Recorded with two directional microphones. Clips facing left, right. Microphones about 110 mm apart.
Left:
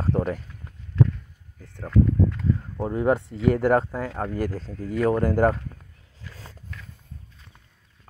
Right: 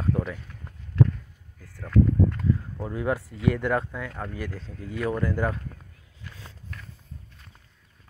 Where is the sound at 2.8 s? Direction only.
30° left (ahead or behind).